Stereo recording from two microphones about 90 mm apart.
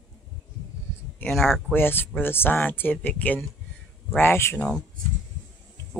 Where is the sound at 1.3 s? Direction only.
Centre (ahead or behind).